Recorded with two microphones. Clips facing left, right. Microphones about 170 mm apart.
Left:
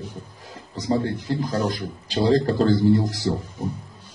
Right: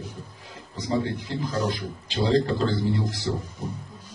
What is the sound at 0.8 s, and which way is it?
Speech, 40° left (ahead or behind).